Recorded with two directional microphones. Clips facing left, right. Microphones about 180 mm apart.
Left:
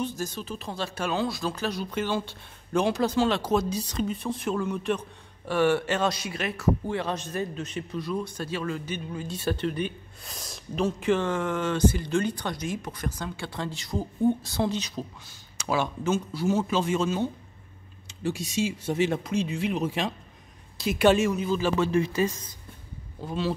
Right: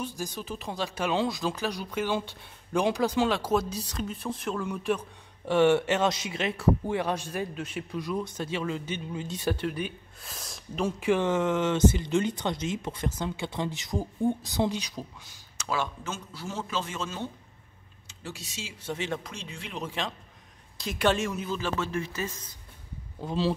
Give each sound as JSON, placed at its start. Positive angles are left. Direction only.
{"t": 0.0, "sound": "speech", "side_deg": -15}
{"t": 5.5, "sound": "a man's voice", "side_deg": -20}
{"t": 15.5, "sound": "a man's voice", "side_deg": 15}
{"t": 18.3, "sound": "a man's voice", "side_deg": 15}